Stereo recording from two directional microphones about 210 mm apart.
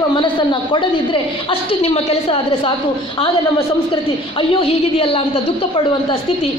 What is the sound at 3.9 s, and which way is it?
A woman's voice, 25° left (ahead or behind).